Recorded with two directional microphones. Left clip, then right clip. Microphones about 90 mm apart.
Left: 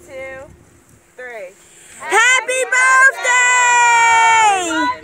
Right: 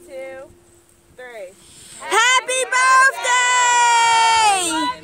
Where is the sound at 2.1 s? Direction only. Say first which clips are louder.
Left 3 dB; 10° left (ahead or behind).